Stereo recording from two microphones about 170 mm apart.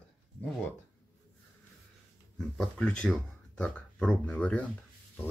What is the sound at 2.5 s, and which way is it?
Speech, 5° left (ahead or behind).